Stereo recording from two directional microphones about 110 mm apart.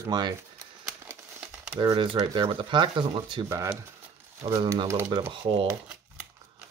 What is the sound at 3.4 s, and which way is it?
Speech, 30° right (ahead or behind).